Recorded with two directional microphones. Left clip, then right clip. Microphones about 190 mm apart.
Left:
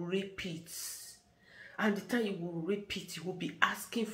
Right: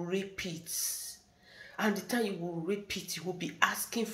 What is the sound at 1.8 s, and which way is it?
Speech, 10° left (ahead or behind).